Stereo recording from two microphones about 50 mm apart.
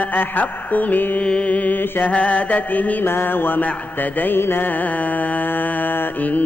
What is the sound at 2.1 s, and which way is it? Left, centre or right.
Mantra, left.